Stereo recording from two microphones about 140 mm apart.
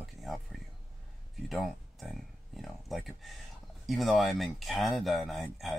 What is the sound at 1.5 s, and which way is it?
Speech, centre (ahead or behind).